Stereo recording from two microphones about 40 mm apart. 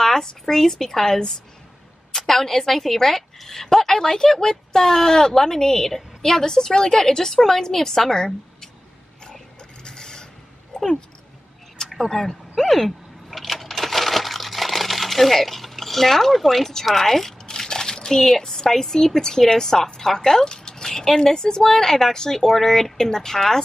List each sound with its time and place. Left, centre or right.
0.0 s speech: centre
9.8 s filing: centre
10.7 s a sound: centre
12.1 s vehicle: centre
17.5 s speech: centre